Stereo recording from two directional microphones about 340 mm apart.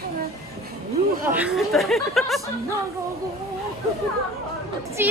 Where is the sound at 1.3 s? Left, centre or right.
Centre.